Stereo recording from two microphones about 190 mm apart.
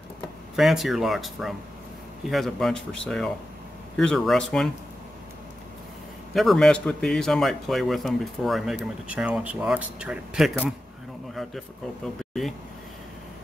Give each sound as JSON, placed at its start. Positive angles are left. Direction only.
{"t": 0.6, "sound": "a man's voice", "side_deg": 0}
{"t": 6.3, "sound": "a man's voice", "side_deg": 0}